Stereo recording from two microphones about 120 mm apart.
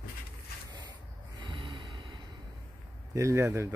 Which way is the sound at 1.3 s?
45° right (ahead or behind).